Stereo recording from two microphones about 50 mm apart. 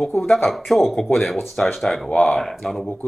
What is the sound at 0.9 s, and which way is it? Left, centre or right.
Speech, centre.